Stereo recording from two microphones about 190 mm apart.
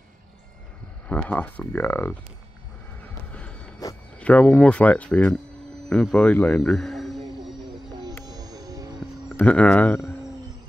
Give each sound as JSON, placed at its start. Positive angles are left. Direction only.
{"t": 1.0, "sound": "speech", "side_deg": 5}
{"t": 3.3, "sound": "a sound", "side_deg": 5}
{"t": 4.2, "sound": "speech", "side_deg": 5}
{"t": 5.9, "sound": "a sound", "side_deg": 5}
{"t": 8.2, "sound": "music", "side_deg": -20}
{"t": 9.4, "sound": "speech", "side_deg": 5}